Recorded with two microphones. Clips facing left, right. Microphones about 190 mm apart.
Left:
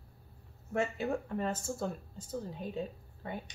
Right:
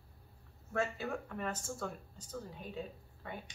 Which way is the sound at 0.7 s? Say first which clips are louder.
Left 4 dB; 25° left (ahead or behind).